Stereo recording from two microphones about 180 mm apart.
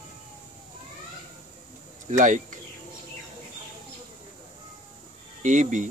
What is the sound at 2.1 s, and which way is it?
Speech, 45° right (ahead or behind).